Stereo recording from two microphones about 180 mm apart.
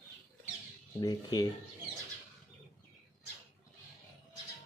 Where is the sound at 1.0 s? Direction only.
20° left (ahead or behind).